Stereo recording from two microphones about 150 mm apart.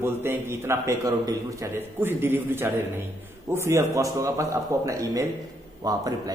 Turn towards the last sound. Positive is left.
turn(degrees=-25)  # may be behind; listen again after turning